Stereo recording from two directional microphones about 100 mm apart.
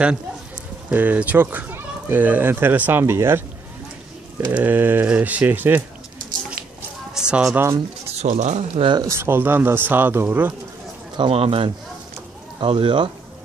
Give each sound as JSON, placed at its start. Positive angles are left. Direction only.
{"t": 0.9, "sound": "a child's voice", "side_deg": -15}
{"t": 7.2, "sound": "speech", "side_deg": -5}
{"t": 8.1, "sound": "speech", "side_deg": -90}
{"t": 9.0, "sound": "a child's voice", "side_deg": -25}
{"t": 11.1, "sound": "speech", "side_deg": -65}
{"t": 12.5, "sound": "speech", "side_deg": -55}